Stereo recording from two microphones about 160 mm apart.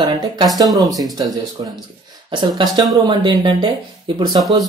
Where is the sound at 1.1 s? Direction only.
25° right (ahead or behind).